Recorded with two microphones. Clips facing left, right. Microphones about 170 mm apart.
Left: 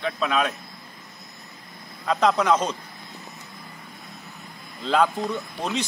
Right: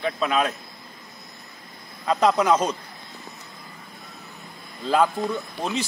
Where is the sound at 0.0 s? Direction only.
Centre (ahead or behind).